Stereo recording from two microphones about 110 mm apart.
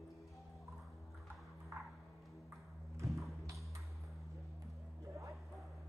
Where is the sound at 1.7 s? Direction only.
30° right (ahead or behind).